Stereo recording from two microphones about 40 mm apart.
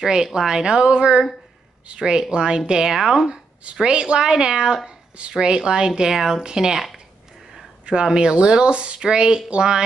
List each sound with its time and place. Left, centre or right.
0.0 s speech: centre
3.8 s speech: right
4.8 s speech: right
5.3 s speech: centre
7.8 s speech: right